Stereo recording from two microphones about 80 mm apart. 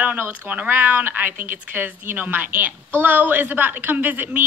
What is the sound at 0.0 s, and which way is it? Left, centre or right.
A woman's voice, right.